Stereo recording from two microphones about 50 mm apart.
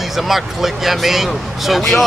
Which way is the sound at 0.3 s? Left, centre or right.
Centre.